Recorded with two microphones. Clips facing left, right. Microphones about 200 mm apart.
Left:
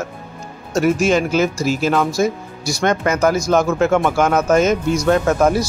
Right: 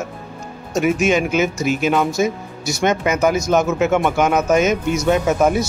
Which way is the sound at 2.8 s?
5° right (ahead or behind).